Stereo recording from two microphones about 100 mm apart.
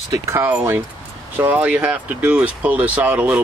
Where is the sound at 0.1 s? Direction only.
30° right (ahead or behind).